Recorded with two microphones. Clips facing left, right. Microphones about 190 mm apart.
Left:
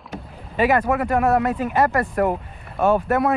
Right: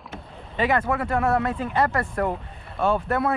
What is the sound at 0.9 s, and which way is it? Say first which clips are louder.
Speech: left 4 dB; 20° left (ahead or behind).